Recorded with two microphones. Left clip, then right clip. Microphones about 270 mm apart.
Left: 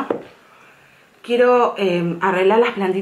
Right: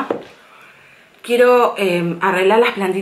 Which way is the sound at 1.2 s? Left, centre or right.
Centre.